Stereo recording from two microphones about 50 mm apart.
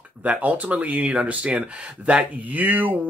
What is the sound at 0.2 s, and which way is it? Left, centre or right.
Speech, right.